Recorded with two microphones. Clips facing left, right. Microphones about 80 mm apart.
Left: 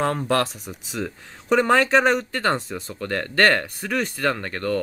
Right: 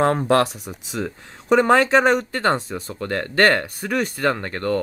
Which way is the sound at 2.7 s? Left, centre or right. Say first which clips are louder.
Right 2 dB; centre.